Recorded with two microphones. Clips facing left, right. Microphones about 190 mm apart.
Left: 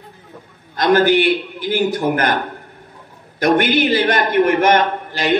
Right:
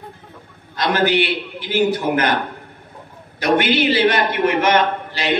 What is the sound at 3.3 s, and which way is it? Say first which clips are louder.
A man's voice: left 2 dB; 50° left (ahead or behind).